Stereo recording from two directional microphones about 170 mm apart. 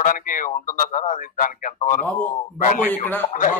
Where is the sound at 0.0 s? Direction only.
50° left (ahead or behind).